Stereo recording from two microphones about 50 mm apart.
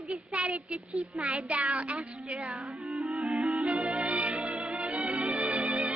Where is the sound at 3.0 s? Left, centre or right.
Right.